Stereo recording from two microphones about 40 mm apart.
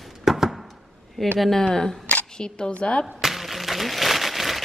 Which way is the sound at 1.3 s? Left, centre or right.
Centre.